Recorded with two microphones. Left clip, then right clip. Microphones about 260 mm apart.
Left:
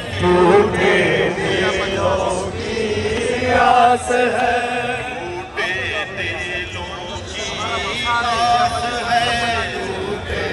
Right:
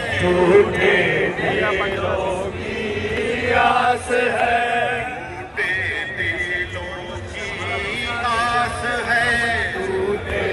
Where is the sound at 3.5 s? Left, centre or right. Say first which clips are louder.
Left 5 dB; left.